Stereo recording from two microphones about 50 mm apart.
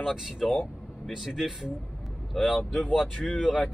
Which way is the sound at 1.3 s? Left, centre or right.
Centre.